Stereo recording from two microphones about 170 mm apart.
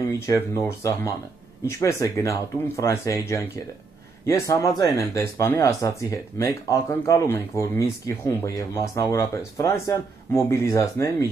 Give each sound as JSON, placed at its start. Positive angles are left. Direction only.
{"t": 0.3, "sound": "speech", "side_deg": 20}